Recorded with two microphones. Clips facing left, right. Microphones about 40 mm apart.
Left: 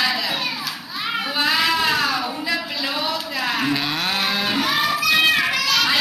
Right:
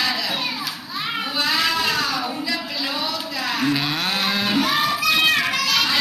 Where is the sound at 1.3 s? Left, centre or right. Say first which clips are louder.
Left 2 dB; centre.